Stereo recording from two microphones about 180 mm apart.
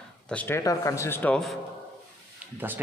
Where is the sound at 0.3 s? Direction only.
10° left (ahead or behind).